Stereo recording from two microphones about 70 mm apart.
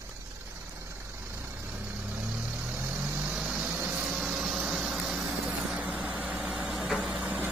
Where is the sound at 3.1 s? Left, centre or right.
Right.